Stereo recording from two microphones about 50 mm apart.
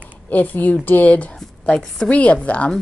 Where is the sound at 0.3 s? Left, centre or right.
Left.